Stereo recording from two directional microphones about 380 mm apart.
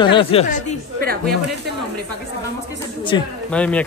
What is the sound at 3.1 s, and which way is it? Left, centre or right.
Speech, centre.